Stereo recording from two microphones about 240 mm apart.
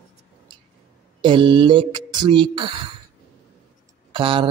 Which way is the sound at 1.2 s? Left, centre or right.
Centre.